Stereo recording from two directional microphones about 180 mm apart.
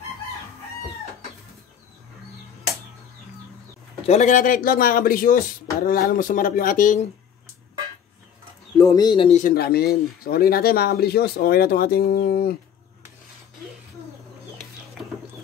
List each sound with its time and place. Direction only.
4.0 s speech: 40° left (ahead or behind)
8.7 s speech: 20° left (ahead or behind)
9.4 s speech: 55° left (ahead or behind)